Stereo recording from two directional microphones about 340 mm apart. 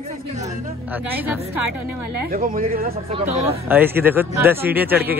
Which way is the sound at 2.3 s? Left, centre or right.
Right.